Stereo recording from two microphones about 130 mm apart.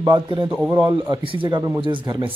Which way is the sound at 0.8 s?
35° right (ahead or behind).